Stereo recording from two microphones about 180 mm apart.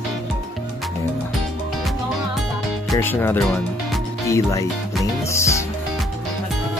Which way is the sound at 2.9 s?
15° left (ahead or behind).